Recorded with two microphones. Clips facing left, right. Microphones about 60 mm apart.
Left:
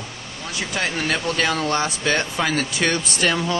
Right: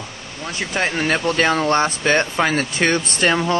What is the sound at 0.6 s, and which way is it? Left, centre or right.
Speech, right.